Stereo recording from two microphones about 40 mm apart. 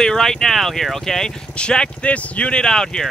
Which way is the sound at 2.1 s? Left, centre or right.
Left.